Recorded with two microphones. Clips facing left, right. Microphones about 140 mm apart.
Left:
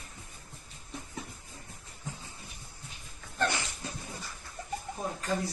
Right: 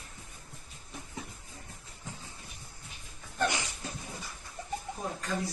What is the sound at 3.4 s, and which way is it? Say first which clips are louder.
Dog: even; 15° right (ahead or behind).